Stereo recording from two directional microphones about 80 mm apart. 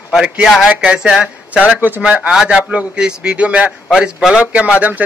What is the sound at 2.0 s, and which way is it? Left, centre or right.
A man's voice, centre.